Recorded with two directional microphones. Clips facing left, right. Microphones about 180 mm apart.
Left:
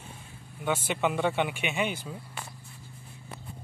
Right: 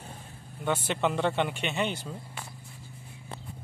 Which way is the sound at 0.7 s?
5° left (ahead or behind).